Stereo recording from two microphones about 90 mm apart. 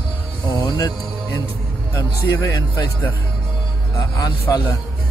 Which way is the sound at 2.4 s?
40° left (ahead or behind).